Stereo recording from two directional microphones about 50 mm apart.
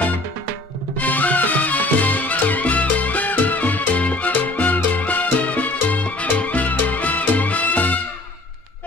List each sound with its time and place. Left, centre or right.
0.9 s music: left